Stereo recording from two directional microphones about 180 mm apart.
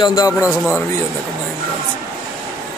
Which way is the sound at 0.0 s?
20° left (ahead or behind).